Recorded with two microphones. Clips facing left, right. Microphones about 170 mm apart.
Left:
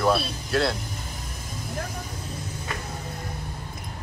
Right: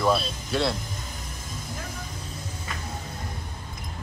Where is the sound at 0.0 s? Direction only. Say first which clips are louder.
Left 1 dB; centre (ahead or behind).